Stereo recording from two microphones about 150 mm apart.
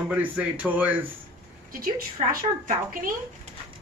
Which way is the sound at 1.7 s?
70° right (ahead or behind).